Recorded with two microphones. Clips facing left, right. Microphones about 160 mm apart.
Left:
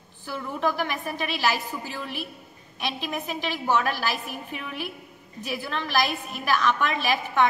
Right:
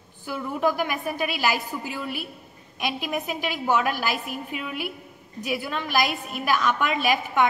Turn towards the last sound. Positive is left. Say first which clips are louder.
# right 1 dB
turn(degrees=-10)  # may be behind; listen again after turning